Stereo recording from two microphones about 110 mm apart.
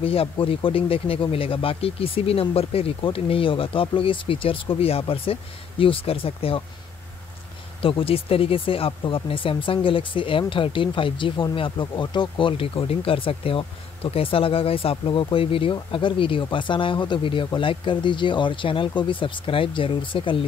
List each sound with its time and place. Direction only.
0.0 s speech: 60° left (ahead or behind)
7.8 s speech: 55° left (ahead or behind)